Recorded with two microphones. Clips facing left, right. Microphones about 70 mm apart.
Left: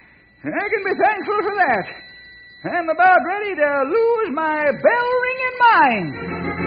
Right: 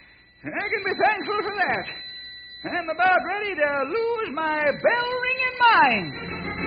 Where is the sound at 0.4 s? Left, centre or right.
Left.